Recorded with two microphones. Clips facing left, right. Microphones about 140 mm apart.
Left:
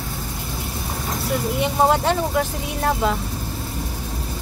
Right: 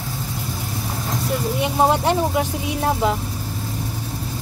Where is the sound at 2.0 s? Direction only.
10° right (ahead or behind).